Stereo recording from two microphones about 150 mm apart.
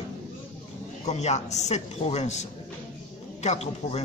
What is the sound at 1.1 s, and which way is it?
Speech, 45° left (ahead or behind).